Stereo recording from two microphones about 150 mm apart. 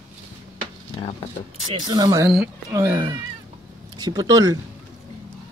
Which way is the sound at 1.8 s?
25° right (ahead or behind).